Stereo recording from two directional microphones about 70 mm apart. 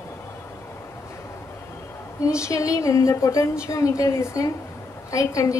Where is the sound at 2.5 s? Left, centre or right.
Left.